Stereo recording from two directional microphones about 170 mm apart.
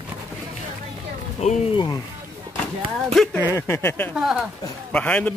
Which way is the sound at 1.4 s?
40° left (ahead or behind).